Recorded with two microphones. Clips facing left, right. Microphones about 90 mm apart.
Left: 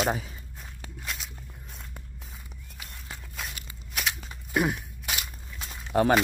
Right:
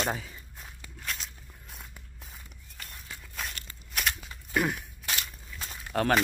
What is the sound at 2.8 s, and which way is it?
Walk, 5° left (ahead or behind).